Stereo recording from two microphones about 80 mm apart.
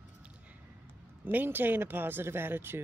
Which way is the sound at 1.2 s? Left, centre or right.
Right.